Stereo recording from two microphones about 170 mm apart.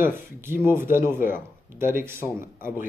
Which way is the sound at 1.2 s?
55° left (ahead or behind).